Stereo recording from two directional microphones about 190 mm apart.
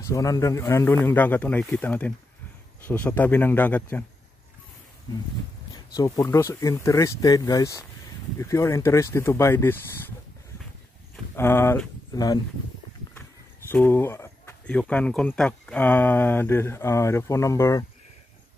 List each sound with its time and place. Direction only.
0.0 s speech: 15° left (ahead or behind)
5.9 s speech: 15° left (ahead or behind)
11.3 s speech: 15° left (ahead or behind)
13.7 s speech: 10° left (ahead or behind)